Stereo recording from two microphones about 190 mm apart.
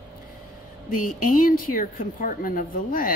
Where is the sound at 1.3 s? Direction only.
45° left (ahead or behind).